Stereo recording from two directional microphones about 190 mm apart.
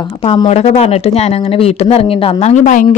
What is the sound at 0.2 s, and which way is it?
Speech, 30° left (ahead or behind).